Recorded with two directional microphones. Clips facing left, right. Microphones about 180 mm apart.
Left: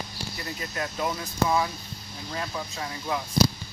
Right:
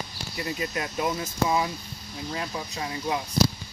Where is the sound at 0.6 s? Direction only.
15° right (ahead or behind).